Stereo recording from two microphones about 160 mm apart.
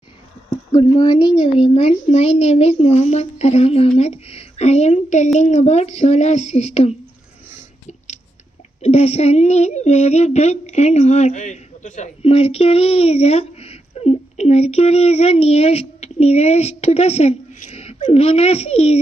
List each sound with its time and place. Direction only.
0.7 s a child's voice: 25° left (ahead or behind); by 7.0 s 40° left (ahead or behind)
8.8 s speech: 40° left (ahead or behind)